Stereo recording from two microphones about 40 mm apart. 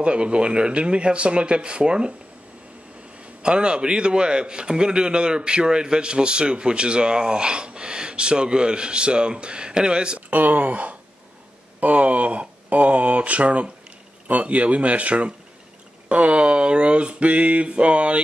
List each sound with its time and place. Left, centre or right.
0.0 s a man's voice: right
3.4 s a man's voice: right
10.3 s a man's voice: right